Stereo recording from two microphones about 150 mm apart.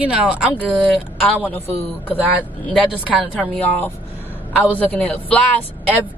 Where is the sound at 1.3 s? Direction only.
10° left (ahead or behind).